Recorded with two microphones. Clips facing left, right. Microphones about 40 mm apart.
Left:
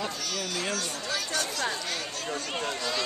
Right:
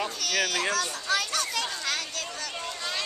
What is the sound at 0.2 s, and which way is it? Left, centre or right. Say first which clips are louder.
Speech: right 5 dB; right.